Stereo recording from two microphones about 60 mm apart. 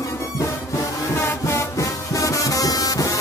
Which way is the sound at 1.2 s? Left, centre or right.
Left.